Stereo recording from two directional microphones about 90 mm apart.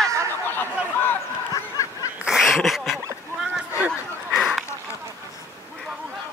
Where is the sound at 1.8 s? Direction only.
35° left (ahead or behind).